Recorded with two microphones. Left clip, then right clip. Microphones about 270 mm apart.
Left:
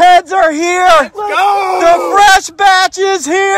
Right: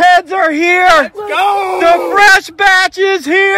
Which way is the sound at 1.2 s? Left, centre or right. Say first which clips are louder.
Left 2 dB; centre.